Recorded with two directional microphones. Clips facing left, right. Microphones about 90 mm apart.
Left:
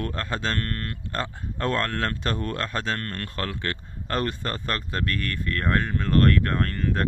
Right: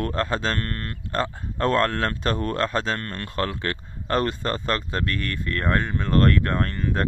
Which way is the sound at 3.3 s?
30° right (ahead or behind).